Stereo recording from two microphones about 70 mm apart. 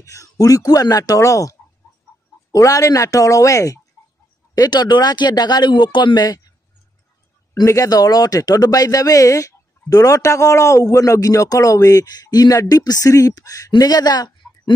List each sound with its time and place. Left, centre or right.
0.0 s speech: left
4.6 s speech: left
7.6 s a man's voice: left